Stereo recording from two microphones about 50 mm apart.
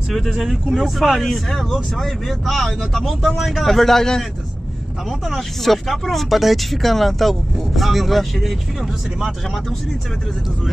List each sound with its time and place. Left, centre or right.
0.4 s speech: centre
5.3 s speech: centre